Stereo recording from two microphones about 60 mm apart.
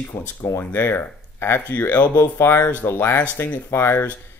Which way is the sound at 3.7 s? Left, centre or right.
Left.